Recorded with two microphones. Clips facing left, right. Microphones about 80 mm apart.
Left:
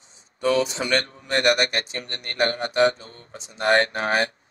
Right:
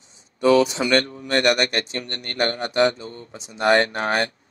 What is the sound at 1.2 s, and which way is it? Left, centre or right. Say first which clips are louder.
Speech: left 1 dB; centre.